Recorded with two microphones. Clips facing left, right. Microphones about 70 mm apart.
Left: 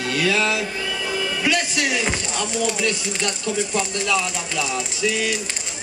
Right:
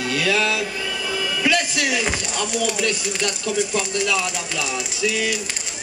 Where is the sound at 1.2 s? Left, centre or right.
Centre.